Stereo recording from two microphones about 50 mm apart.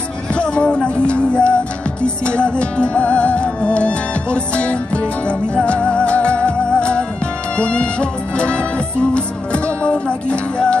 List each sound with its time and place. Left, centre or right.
0.3 s music: left